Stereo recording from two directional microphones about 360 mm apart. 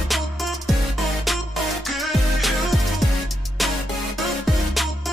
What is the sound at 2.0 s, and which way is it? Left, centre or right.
Music, centre.